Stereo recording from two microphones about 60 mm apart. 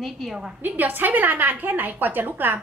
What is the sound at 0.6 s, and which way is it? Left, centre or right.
A woman's voice, right.